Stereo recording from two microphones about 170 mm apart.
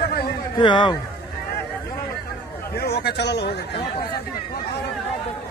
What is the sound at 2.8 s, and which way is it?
Speech, 70° left (ahead or behind).